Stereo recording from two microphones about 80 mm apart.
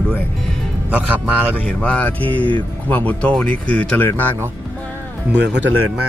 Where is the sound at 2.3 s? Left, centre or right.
Right.